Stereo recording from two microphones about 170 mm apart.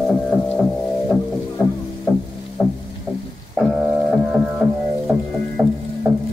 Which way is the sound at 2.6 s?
5° left (ahead or behind).